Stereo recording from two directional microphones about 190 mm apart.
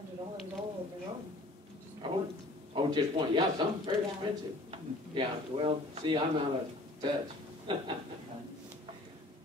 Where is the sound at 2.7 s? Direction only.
25° right (ahead or behind).